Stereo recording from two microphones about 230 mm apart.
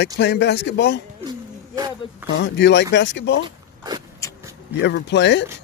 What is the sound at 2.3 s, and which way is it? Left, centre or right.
Speech, left.